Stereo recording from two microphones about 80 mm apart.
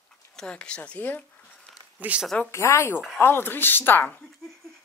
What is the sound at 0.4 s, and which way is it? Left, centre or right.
Speech, centre.